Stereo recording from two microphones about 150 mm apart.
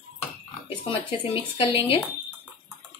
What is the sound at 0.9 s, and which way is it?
Speech, 35° left (ahead or behind).